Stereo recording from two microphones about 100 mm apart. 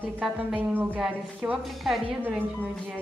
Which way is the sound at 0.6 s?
20° right (ahead or behind).